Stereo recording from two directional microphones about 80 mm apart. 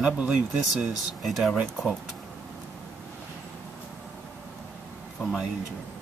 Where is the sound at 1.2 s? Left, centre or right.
Centre.